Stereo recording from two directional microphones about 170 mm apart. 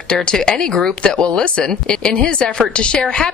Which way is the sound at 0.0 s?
5° left (ahead or behind).